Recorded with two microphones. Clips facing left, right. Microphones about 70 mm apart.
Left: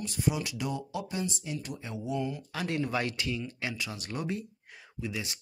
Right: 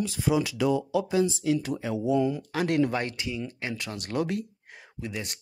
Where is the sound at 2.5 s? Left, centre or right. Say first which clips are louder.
Right 8 dB; right.